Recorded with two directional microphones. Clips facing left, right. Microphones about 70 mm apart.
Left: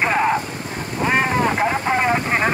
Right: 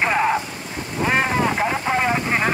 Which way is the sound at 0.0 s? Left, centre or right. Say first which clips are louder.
Left 1 dB; centre.